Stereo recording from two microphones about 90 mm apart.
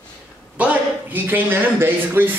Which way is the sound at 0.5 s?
20° right (ahead or behind).